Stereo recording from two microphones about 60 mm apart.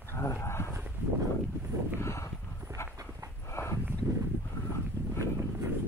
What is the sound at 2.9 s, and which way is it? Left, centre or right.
Dog, right.